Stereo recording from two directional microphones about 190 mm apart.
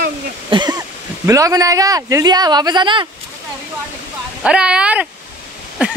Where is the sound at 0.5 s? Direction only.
25° right (ahead or behind).